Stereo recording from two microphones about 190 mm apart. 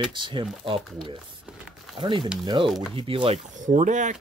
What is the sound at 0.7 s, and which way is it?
Speech, centre (ahead or behind).